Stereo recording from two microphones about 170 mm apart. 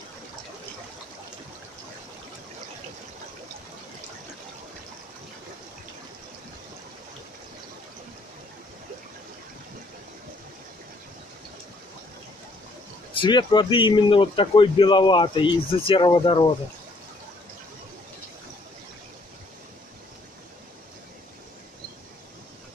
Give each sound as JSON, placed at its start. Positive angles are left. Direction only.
{"t": 13.2, "sound": "a man's voice", "side_deg": 25}